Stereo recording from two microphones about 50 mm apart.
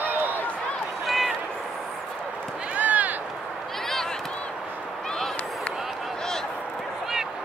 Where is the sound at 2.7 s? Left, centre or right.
Right.